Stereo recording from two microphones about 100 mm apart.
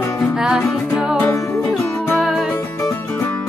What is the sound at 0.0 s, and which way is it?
Music, 30° left (ahead or behind).